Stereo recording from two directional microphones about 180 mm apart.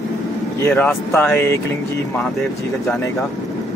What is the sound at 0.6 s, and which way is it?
Speech, 10° left (ahead or behind).